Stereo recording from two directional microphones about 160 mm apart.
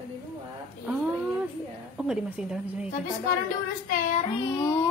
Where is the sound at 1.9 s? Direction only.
5° right (ahead or behind).